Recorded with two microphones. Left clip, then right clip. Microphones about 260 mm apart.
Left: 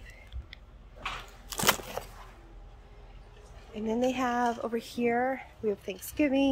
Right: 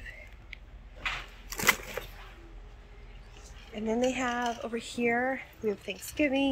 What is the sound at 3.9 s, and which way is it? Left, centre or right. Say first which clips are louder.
Speech: left 1 dB; centre.